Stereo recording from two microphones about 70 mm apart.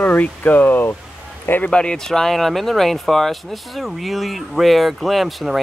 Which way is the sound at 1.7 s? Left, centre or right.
Centre.